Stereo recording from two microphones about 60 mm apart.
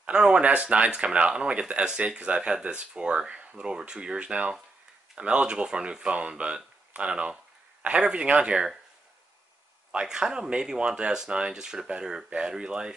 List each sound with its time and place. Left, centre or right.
0.0 s speech: centre
9.9 s speech: centre